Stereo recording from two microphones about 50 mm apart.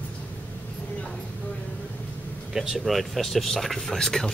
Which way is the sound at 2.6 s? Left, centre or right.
Centre.